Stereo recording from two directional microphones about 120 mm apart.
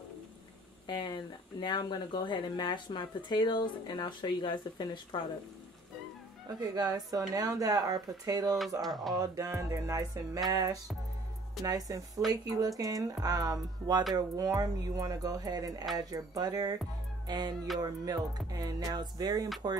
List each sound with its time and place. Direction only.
0.8 s speech: 40° left (ahead or behind)
6.7 s speech: 35° right (ahead or behind)
8.8 s speech: centre (ahead or behind)
9.1 s music: 25° right (ahead or behind)
12.4 s speech: 30° right (ahead or behind)